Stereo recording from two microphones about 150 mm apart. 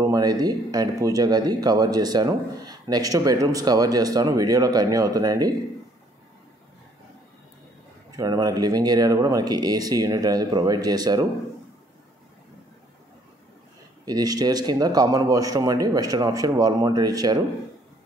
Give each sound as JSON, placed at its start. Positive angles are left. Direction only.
{"t": 0.0, "sound": "speech", "side_deg": -25}
{"t": 8.2, "sound": "speech", "side_deg": -25}
{"t": 14.0, "sound": "speech", "side_deg": -25}